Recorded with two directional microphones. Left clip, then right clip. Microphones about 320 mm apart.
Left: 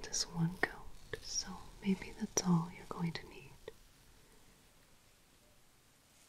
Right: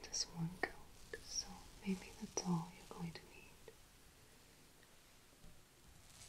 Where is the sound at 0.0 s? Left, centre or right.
Left.